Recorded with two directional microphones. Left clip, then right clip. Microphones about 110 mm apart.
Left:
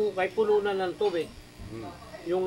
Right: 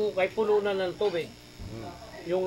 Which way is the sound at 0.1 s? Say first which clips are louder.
Even; 25° left (ahead or behind).